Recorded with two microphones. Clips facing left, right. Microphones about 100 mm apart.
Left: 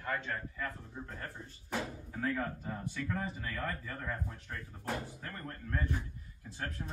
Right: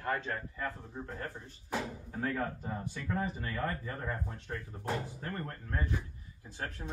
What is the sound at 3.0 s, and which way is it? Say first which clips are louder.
Speech: right 3 dB; 25° right (ahead or behind).